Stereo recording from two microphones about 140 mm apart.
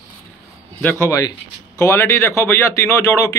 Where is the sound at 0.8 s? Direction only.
15° left (ahead or behind).